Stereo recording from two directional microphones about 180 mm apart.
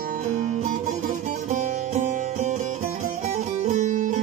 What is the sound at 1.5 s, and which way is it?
Music, 45° right (ahead or behind).